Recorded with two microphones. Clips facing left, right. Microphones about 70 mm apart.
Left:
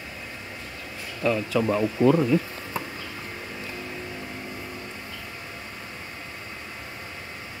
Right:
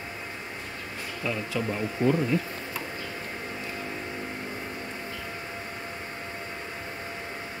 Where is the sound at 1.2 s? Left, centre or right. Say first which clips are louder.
Left 7 dB; left.